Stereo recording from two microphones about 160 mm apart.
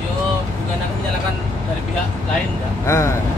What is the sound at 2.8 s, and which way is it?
Speech, 15° left (ahead or behind).